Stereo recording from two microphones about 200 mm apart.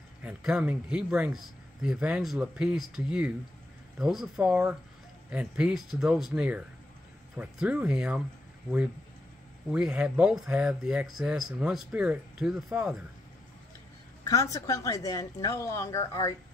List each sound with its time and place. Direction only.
0.2 s speech: 5° right (ahead or behind)
9.7 s speech: 5° right (ahead or behind)
14.2 s speech: 15° left (ahead or behind)